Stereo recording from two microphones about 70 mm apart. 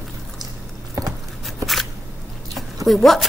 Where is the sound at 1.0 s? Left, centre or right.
Right.